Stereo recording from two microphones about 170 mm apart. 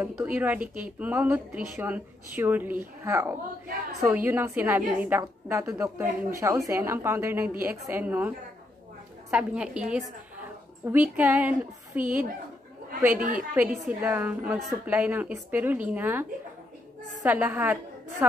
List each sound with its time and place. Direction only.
0.0 s a woman's voice: 10° right (ahead or behind)
13.2 s a woman's voice: 50° right (ahead or behind)
13.6 s a woman's voice: 10° right (ahead or behind)